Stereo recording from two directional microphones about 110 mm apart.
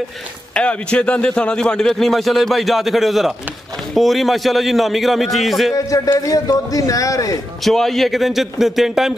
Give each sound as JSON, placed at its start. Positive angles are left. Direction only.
{"t": 0.6, "sound": "a man's voice", "side_deg": 10}
{"t": 5.9, "sound": "speech", "side_deg": 30}
{"t": 7.6, "sound": "a man's voice", "side_deg": 0}